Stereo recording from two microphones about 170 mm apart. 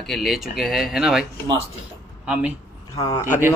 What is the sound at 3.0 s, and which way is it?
Speech, 20° left (ahead or behind).